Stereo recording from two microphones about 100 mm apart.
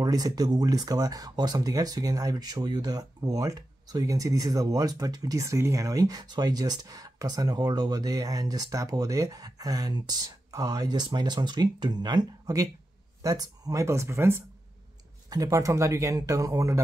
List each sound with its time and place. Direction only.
0.0 s speech: 40° right (ahead or behind)